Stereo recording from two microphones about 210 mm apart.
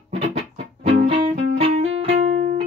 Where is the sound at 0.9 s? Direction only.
25° right (ahead or behind).